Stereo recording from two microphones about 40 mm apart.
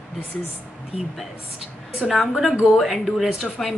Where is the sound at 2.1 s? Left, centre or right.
Centre.